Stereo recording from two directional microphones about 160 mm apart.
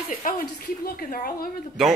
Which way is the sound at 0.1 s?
60° left (ahead or behind).